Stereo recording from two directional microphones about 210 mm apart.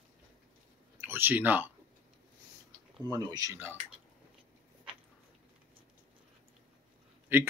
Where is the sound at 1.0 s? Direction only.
10° right (ahead or behind).